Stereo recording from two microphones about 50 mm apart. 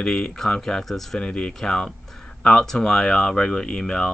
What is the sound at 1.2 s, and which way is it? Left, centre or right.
Speech, centre.